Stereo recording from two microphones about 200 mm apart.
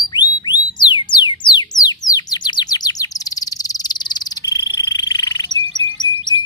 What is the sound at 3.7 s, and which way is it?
Frog, 20° left (ahead or behind).